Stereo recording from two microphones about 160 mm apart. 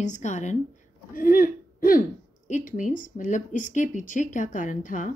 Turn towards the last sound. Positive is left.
turn(degrees=55)  # may be behind; listen again after turning